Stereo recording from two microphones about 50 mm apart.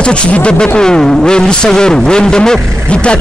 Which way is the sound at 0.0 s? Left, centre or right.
Left.